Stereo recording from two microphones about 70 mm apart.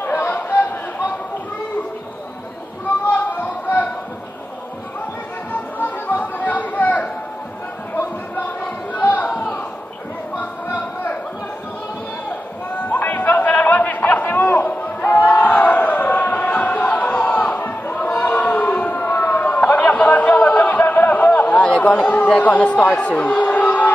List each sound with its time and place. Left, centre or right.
0.0 s chatter: left
3.1 s a sound: left
5.5 s music: left
7.9 s a sound: left
8.9 s chatter: left
12.8 s chatter: left